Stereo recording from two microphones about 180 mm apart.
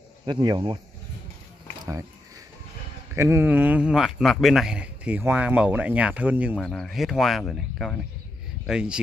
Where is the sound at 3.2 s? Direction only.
15° right (ahead or behind).